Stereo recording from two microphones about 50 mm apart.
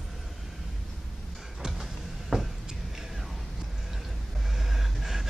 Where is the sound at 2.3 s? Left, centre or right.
Centre.